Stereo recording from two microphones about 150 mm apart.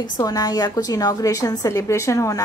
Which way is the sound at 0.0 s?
25° left (ahead or behind).